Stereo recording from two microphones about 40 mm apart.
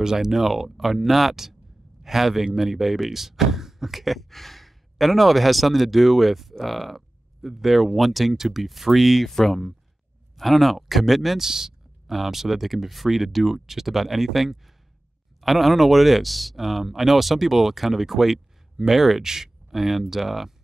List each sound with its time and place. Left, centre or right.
0.0 s speech: centre
11.4 s speech: centre